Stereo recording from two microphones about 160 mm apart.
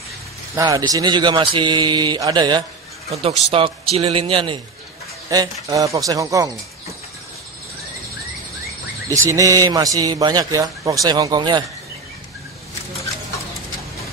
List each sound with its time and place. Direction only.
0.6 s a man's voice: 20° right (ahead or behind)
3.1 s speech: 35° right (ahead or behind)
5.3 s a man's voice: 20° right (ahead or behind)
9.1 s a man's voice: 20° right (ahead or behind)